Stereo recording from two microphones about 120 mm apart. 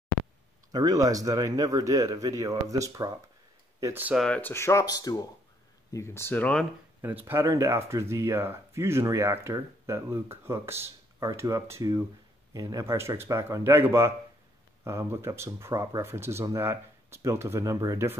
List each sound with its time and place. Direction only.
0.7 s speech: 30° right (ahead or behind)
3.8 s speech: 15° right (ahead or behind)
4.4 s speech: 20° left (ahead or behind)
5.9 s speech: 20° left (ahead or behind)
7.0 s speech: 15° right (ahead or behind)